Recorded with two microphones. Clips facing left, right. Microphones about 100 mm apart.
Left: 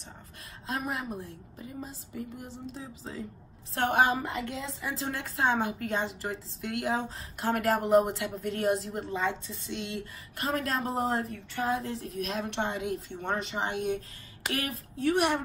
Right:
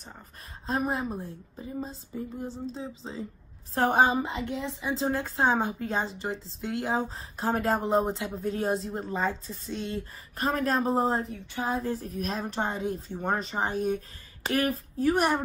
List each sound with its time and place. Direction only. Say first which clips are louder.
0.7 s a woman's voice: right 5 dB; 30° right (ahead or behind)